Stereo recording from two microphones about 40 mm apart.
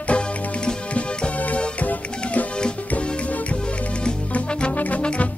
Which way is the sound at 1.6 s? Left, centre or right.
Left.